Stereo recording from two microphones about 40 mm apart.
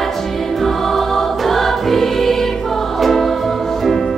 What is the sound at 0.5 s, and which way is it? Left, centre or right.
Music, centre.